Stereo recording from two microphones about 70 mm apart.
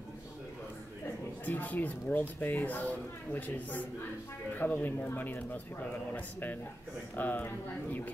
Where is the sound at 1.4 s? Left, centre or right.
Left.